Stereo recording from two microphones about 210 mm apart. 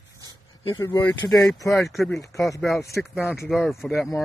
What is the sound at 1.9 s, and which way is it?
Speech, centre (ahead or behind).